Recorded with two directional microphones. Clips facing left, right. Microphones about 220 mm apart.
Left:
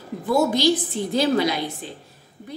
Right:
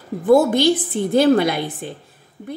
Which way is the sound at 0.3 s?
55° right (ahead or behind).